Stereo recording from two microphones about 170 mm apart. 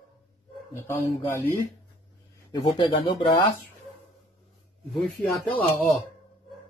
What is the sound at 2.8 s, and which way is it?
Speech, 30° left (ahead or behind).